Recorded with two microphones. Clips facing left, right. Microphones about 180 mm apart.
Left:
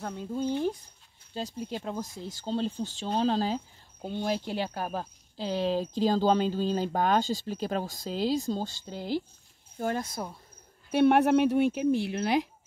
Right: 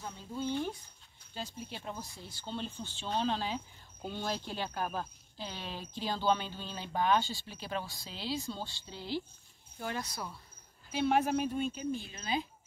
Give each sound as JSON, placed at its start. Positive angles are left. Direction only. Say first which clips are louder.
{"t": 0.0, "sound": "speech", "louder": "left 9 dB", "side_deg": 65}
{"t": 1.3, "sound": "speech", "louder": "left 8 dB", "side_deg": 35}
{"t": 10.9, "sound": "speech", "louder": "left 8 dB", "side_deg": 60}